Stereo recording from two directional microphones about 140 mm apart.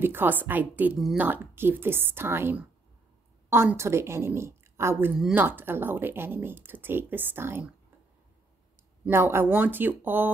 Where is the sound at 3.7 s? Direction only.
20° right (ahead or behind).